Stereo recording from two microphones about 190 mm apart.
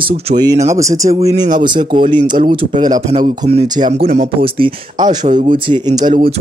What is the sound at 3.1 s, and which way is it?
Speech, 35° right (ahead or behind).